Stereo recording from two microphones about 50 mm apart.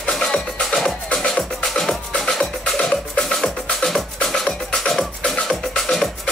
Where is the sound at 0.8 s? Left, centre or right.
Centre.